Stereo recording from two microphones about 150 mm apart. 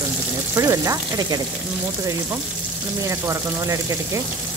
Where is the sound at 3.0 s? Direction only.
20° right (ahead or behind).